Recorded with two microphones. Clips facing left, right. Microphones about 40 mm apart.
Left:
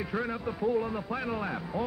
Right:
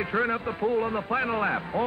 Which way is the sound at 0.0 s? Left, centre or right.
Right.